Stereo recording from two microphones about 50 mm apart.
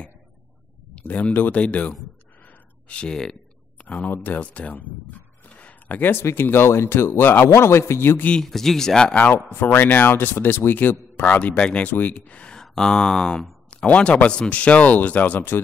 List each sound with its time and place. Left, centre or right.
0.9 s speech: left
2.4 s a sound: left
3.8 s speech: left
6.2 s speech: left
7.4 s a man's voice: left
8.4 s speech: centre
9.1 s speech: left
12.6 s speech: centre
13.8 s speech: left